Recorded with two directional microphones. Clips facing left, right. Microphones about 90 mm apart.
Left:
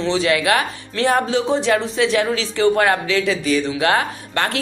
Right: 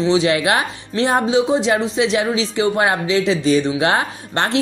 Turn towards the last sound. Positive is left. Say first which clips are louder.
# right 3 dB
turn(degrees=-25)  # may be behind; listen again after turning